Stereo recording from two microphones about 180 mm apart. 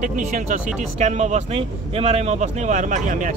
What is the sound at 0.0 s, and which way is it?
Speech, 45° right (ahead or behind).